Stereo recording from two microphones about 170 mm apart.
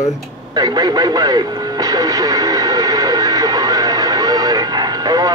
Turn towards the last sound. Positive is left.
turn(degrees=-25)  # may be behind; listen again after turning